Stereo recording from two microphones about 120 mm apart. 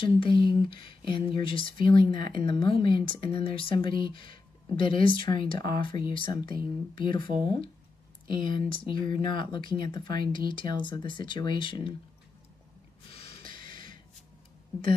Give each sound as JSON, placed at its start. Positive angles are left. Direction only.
{"t": 0.2, "sound": "speech", "side_deg": 45}
{"t": 13.1, "sound": "snort", "side_deg": 50}